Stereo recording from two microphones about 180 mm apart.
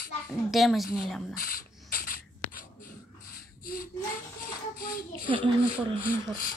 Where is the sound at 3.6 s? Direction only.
55° left (ahead or behind).